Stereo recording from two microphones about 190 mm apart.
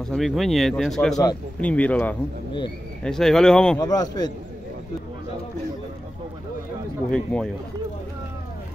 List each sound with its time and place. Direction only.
0.0 s speech: centre (ahead or behind)
3.8 s speech: 20° left (ahead or behind)
7.1 s speech: 5° left (ahead or behind)